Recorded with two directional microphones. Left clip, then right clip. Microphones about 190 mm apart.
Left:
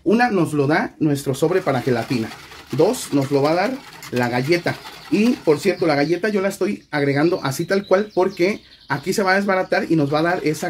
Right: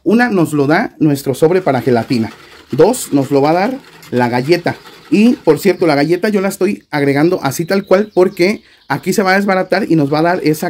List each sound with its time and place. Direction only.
0.1 s speech: 55° right (ahead or behind)